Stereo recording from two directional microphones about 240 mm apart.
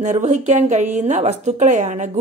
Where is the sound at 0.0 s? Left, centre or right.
Right.